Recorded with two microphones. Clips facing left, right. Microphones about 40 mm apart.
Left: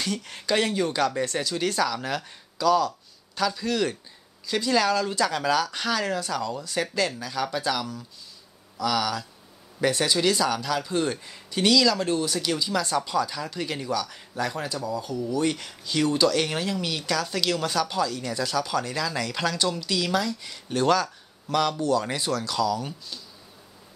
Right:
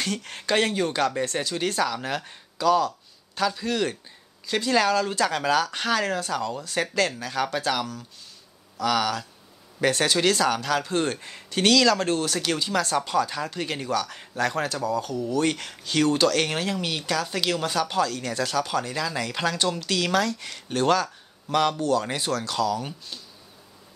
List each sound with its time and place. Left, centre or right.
0.0 s speech: right
20.6 s speech: right